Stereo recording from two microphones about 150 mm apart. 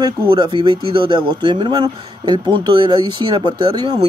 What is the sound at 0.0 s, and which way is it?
Speech, 30° right (ahead or behind).